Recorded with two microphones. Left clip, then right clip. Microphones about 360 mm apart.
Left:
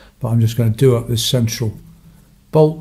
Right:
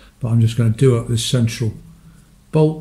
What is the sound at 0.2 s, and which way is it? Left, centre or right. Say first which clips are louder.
Speech: left 1 dB; centre.